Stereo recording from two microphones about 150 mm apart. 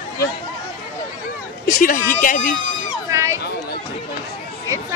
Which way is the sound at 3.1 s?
20° right (ahead or behind).